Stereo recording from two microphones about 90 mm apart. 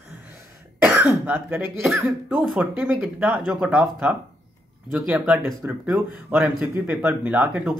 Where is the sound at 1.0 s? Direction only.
20° right (ahead or behind).